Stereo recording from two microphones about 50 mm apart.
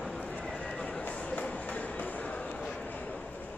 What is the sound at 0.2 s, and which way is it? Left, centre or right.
Clip-clop, left.